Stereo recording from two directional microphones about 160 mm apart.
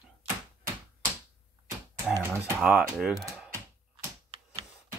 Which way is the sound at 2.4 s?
10° right (ahead or behind).